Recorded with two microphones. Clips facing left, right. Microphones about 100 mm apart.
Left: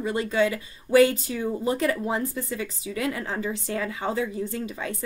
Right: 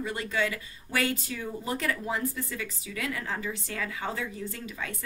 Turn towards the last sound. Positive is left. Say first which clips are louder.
# left 6 dB
turn(degrees=25)  # may be behind; listen again after turning